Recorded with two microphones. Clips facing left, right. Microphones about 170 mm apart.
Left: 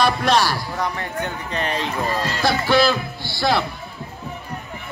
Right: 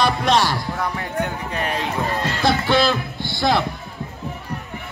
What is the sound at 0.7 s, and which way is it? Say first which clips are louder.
Speech: right 1 dB; 10° right (ahead or behind).